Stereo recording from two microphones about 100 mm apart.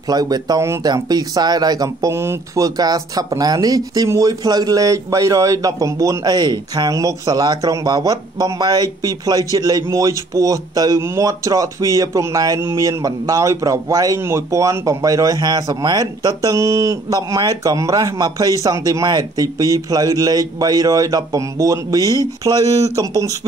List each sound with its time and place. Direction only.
0.1 s speech: 40° right (ahead or behind)